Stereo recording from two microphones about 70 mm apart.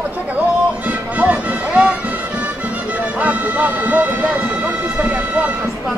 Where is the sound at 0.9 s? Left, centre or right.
Right.